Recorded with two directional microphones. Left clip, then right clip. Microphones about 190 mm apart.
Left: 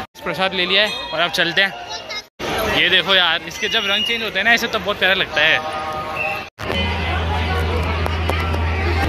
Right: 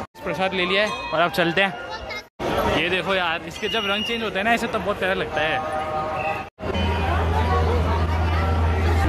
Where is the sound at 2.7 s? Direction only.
5° right (ahead or behind).